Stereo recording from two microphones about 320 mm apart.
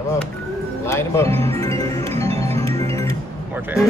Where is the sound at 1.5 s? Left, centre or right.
Centre.